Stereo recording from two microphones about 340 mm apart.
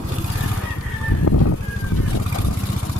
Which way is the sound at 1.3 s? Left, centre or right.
Left.